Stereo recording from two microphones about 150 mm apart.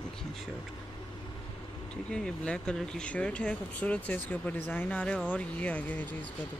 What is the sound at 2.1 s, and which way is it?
Speech, 5° left (ahead or behind).